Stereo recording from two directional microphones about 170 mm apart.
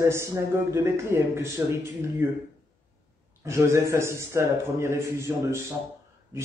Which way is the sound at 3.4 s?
15° right (ahead or behind).